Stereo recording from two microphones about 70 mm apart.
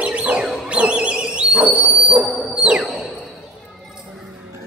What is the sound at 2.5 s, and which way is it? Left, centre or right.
Music, centre.